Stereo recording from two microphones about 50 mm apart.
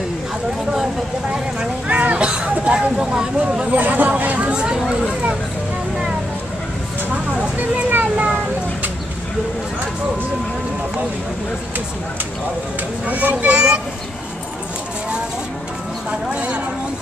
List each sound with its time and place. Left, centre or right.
1.9 s a child's voice: right
3.7 s a child's voice: right
7.9 s a child's voice: right
13.1 s a child's voice: right
16.1 s a child's voice: right